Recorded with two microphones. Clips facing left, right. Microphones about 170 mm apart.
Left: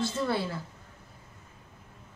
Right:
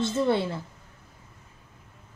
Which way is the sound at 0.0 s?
25° right (ahead or behind).